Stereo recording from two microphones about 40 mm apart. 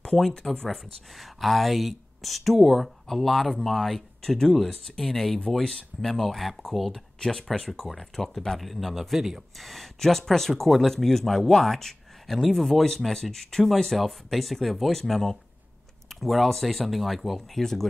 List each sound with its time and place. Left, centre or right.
0.0 s speech: centre
1.1 s speech: centre
6.9 s speech: centre
9.6 s speech: centre